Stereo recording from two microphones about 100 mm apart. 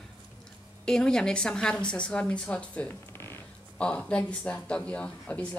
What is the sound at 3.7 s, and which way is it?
Speech, 10° left (ahead or behind).